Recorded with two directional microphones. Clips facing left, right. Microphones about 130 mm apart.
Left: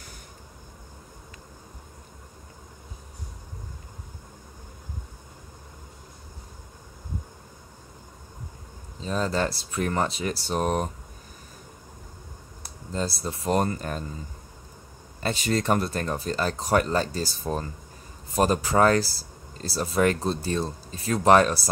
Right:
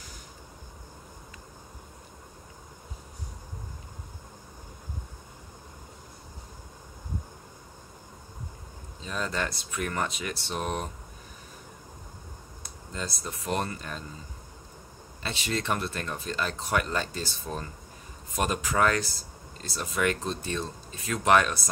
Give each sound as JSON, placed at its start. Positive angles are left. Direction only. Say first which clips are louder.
{"t": 9.0, "sound": "speech", "louder": "left 6 dB", "side_deg": 35}
{"t": 12.9, "sound": "speech", "louder": "left 7 dB", "side_deg": 35}
{"t": 15.2, "sound": "speech", "louder": "left 6 dB", "side_deg": 45}